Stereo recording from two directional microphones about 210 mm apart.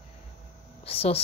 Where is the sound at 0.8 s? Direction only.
30° left (ahead or behind).